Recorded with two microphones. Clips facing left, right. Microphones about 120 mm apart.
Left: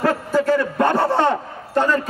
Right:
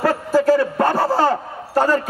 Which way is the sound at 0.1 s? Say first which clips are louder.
Right 3 dB; 35° right (ahead or behind).